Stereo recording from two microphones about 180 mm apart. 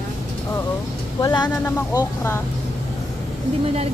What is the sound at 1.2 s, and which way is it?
Speech, 25° left (ahead or behind).